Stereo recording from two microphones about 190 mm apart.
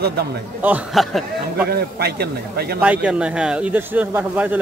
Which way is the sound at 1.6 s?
55° right (ahead or behind).